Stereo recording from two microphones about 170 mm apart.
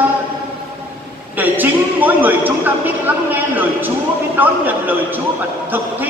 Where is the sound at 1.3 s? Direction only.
10° right (ahead or behind).